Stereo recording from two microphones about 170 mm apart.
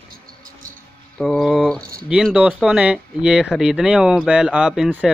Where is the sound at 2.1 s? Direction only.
5° right (ahead or behind).